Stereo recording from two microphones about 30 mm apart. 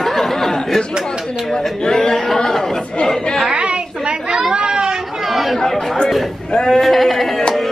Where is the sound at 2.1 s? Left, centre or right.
Centre.